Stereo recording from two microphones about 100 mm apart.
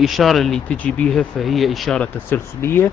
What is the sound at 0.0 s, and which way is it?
Speech, centre (ahead or behind).